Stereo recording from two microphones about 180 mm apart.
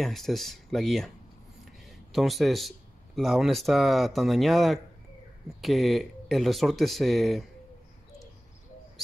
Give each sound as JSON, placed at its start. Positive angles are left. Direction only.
{"t": 0.0, "sound": "speech", "side_deg": 0}
{"t": 1.6, "sound": "a sound", "side_deg": 0}
{"t": 3.2, "sound": "speech", "side_deg": 0}